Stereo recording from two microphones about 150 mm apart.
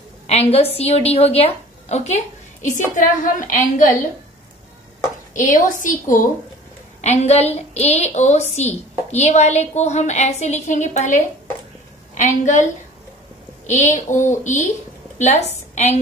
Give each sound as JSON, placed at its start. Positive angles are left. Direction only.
{"t": 0.3, "sound": "a woman's voice", "side_deg": 45}
{"t": 5.3, "sound": "a woman's voice", "side_deg": 60}
{"t": 7.0, "sound": "a woman's voice", "side_deg": 50}
{"t": 13.7, "sound": "a woman's voice", "side_deg": 55}